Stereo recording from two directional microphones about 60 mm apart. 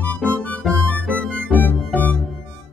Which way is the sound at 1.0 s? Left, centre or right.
Centre.